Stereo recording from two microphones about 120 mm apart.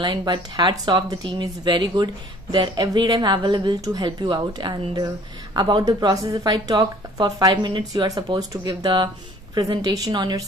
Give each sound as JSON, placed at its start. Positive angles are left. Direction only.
{"t": 0.0, "sound": "a woman's voice", "side_deg": -40}